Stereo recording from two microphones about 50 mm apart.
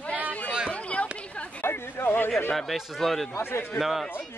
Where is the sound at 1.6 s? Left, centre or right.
Left.